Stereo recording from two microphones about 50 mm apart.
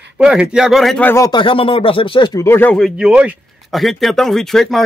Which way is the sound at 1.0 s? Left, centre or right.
Left.